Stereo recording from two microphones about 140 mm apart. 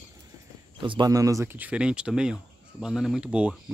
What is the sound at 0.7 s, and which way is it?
Speech, 35° right (ahead or behind).